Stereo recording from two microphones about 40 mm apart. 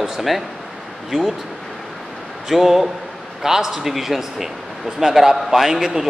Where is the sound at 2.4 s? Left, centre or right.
Centre.